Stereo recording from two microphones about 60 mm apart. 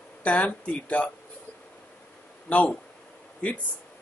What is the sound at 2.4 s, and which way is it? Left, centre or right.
Speech, left.